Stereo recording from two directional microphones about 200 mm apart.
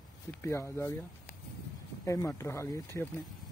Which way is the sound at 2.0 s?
15° left (ahead or behind).